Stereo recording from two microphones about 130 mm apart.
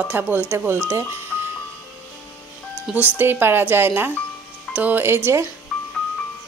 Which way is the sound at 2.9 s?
10° right (ahead or behind).